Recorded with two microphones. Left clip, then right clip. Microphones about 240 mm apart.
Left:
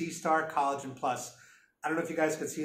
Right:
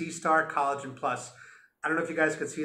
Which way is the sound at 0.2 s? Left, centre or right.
Centre.